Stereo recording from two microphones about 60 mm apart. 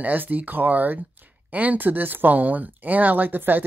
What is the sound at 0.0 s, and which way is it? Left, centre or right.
Speech, right.